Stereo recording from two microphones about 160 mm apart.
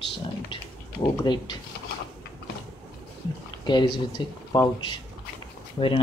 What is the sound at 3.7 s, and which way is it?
Speech, 30° left (ahead or behind).